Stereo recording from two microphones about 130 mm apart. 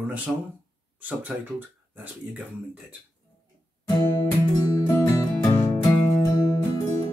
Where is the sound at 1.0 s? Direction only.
15° right (ahead or behind).